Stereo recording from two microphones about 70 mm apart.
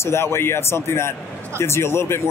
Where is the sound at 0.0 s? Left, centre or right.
Left.